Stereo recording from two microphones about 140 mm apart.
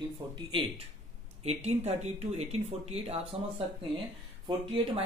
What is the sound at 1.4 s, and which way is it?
Speech, 50° right (ahead or behind).